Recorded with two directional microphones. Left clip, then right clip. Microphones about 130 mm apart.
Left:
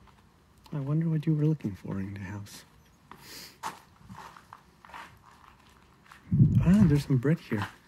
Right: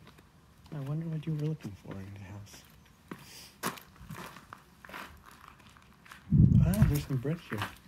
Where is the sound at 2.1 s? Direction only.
90° left.